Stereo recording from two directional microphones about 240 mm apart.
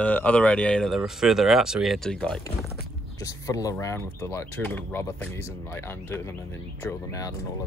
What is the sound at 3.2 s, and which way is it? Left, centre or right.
Speech, centre.